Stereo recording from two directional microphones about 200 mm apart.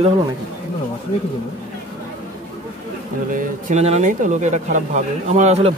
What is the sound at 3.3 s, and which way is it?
Speech, 45° right (ahead or behind).